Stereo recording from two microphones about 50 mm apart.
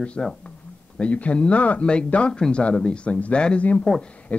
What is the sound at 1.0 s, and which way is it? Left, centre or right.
Speech, left.